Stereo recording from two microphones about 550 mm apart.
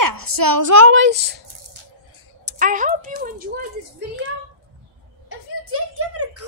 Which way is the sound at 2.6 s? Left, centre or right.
Centre.